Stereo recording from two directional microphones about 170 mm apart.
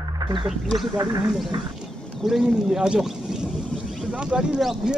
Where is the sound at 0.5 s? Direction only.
Centre (ahead or behind).